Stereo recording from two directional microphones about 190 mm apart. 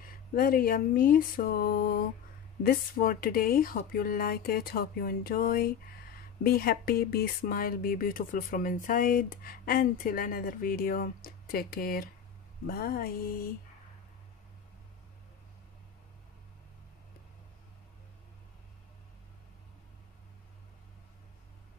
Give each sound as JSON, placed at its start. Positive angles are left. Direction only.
{"t": 0.0, "sound": "speech", "side_deg": 50}